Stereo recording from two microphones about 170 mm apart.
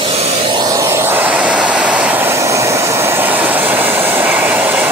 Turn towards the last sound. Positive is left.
turn(degrees=-10)  # may be behind; listen again after turning